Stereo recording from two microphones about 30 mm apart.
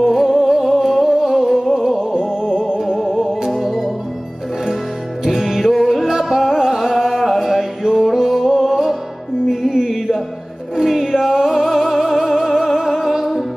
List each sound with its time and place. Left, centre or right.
0.0 s music: centre
2.0 s music: right
3.6 s music: centre
5.2 s music: centre
9.8 s music: centre